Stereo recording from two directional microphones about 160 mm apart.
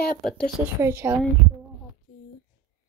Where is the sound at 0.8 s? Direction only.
15° right (ahead or behind).